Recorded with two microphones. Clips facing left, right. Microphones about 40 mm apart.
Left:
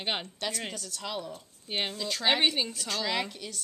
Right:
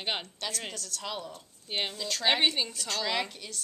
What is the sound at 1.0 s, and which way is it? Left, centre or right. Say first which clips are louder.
Speech: left 2 dB; centre.